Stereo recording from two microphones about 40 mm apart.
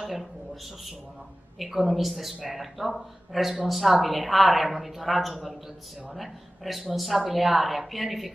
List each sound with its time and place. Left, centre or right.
1.6 s a woman's voice: centre